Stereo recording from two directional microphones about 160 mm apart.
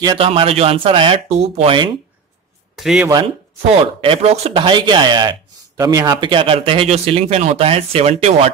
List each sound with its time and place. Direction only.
0.0 s speech: 35° right (ahead or behind)
2.7 s speech: centre (ahead or behind)
3.6 s speech: 35° right (ahead or behind)